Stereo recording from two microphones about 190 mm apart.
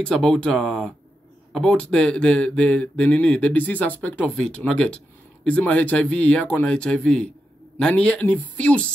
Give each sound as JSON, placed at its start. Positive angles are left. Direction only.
{"t": 0.0, "sound": "speech", "side_deg": 5}